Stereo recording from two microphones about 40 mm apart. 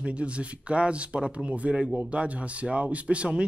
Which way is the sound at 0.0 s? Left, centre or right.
Right.